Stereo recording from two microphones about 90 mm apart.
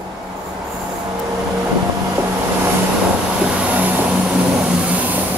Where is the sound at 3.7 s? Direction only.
20° right (ahead or behind).